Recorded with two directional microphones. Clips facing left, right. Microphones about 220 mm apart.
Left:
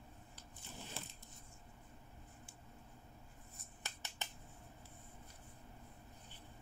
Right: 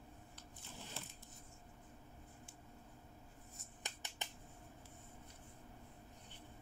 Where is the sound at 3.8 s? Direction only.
15° right (ahead or behind).